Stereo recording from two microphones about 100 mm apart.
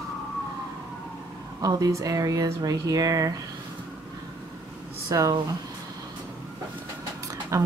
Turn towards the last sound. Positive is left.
turn(degrees=-30)  # may be behind; listen again after turning